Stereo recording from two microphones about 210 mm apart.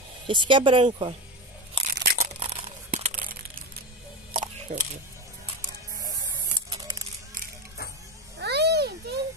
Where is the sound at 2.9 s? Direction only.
40° right (ahead or behind).